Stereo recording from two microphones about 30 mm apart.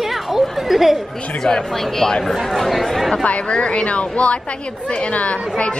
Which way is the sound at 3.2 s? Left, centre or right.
Left.